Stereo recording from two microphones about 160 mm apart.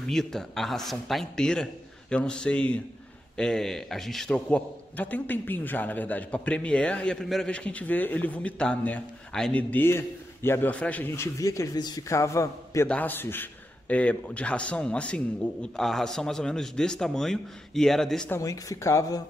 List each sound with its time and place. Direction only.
0.1 s a man's voice: centre (ahead or behind)
18.3 s speech: 20° left (ahead or behind)